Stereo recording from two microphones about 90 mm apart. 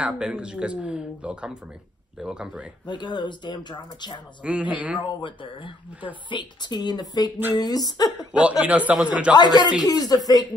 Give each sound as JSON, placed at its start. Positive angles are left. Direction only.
{"t": 0.0, "sound": "speech", "side_deg": -10}
{"t": 2.9, "sound": "speech", "side_deg": 60}
{"t": 4.4, "sound": "speech", "side_deg": -15}
{"t": 5.0, "sound": "speech", "side_deg": 65}
{"t": 6.3, "sound": "speech", "side_deg": 55}
{"t": 8.3, "sound": "speech", "side_deg": -15}
{"t": 9.3, "sound": "speech", "side_deg": 50}